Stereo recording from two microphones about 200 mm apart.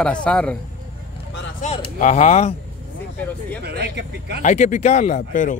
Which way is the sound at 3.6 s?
55° right (ahead or behind).